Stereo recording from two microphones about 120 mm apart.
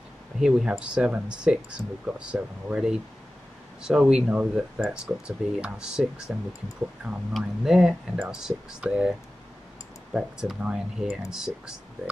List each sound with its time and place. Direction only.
0.4 s speech: 5° right (ahead or behind)
10.1 s speech: 10° right (ahead or behind)